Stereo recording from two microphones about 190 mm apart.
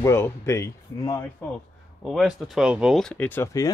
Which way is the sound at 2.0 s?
Centre (ahead or behind).